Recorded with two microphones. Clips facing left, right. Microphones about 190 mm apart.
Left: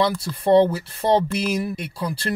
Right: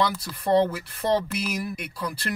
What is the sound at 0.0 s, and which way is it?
Speech, 30° left (ahead or behind).